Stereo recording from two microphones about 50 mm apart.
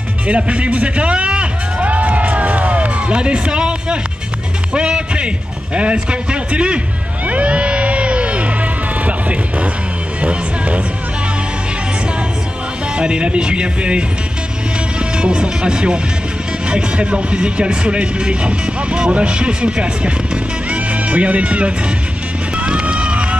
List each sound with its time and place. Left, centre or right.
0.3 s music: right
5.8 s speech: right
7.2 s crowd: right
9.0 s speech: right
12.9 s speech: centre
15.1 s speech: centre
22.6 s music: right